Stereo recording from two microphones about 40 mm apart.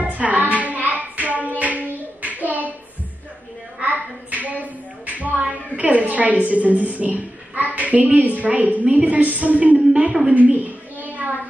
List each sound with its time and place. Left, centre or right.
0.0 s music: right
1.6 s child singing: right
3.8 s a sound: right
5.0 s music: right
5.8 s a woman's voice: right
10.3 s a sound: right